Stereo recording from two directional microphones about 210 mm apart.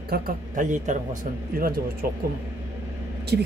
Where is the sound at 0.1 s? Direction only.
35° right (ahead or behind).